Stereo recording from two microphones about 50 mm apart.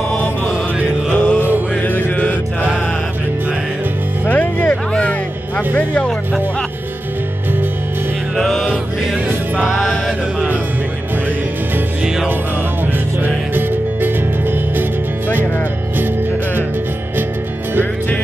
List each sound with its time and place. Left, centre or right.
1.1 s music: left
1.8 s music: left
4.3 s music: left
8.4 s music: centre
9.8 s music: centre
13.2 s music: right